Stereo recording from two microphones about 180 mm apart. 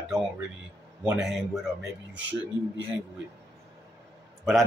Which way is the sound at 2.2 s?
85° right.